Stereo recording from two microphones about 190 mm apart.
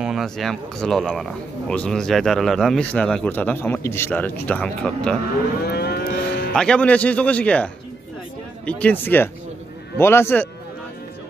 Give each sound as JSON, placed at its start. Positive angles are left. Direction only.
{"t": 0.0, "sound": "speech", "side_deg": 0}
{"t": 5.7, "sound": "vehicle", "side_deg": 60}
{"t": 6.5, "sound": "speech", "side_deg": 5}